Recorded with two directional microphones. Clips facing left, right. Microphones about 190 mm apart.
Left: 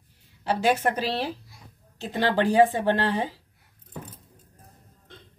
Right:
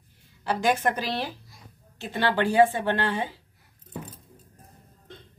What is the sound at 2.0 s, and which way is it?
Speech, 35° left (ahead or behind).